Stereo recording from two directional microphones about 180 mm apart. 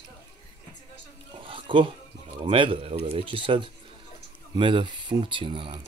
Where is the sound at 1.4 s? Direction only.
30° right (ahead or behind).